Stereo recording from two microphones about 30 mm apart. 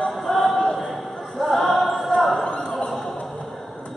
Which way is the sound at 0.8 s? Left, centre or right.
Centre.